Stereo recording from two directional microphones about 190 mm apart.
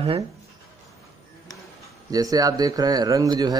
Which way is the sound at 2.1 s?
20° right (ahead or behind).